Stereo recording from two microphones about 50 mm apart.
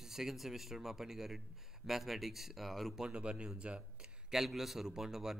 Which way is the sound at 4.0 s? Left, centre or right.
Centre.